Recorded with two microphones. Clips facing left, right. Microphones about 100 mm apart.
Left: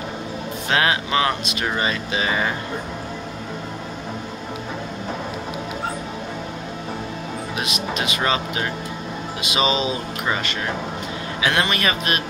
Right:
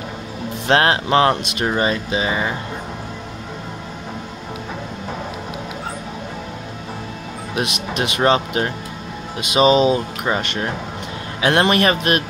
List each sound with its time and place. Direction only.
0.7 s speech: 55° right (ahead or behind)
1.8 s speech: 35° right (ahead or behind)
2.2 s speech: 15° right (ahead or behind)
7.5 s a man's voice: 65° right (ahead or behind)
8.2 s speech: 45° right (ahead or behind)
11.6 s a man's voice: 60° right (ahead or behind)